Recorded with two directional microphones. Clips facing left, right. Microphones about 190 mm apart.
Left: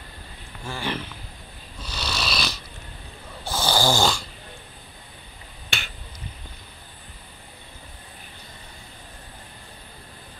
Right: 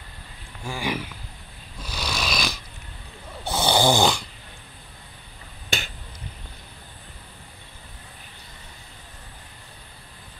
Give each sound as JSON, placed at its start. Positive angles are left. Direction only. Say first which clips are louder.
{"t": 0.7, "sound": "speech", "louder": "right 2 dB", "side_deg": -10}
{"t": 1.8, "sound": "snoring", "louder": "right 1 dB", "side_deg": -10}